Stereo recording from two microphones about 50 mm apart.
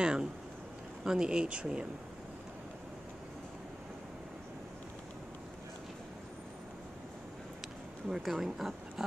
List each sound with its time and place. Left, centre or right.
0.0 s a sound: centre
1.0 s speech: centre
8.1 s speech: centre